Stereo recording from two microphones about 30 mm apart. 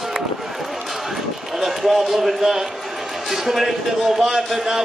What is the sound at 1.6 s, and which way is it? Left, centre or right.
A man's voice, centre.